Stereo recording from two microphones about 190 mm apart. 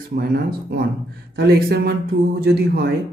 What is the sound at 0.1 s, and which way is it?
Speech, 55° right (ahead or behind).